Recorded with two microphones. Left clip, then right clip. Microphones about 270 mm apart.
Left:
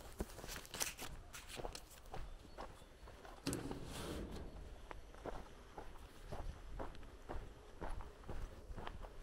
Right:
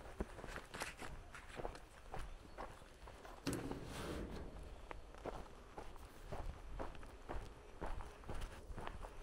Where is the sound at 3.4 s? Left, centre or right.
Centre.